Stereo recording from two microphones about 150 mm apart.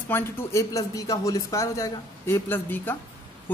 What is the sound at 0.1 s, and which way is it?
A man's voice, 15° left (ahead or behind).